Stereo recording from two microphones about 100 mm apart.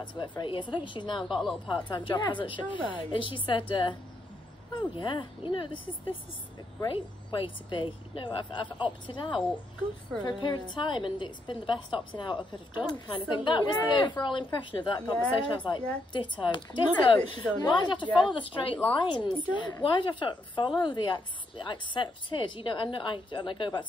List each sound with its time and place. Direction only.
0.0 s a woman's voice: 50° left (ahead or behind)